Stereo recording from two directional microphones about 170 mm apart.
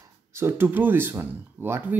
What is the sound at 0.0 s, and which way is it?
Speech, 15° right (ahead or behind).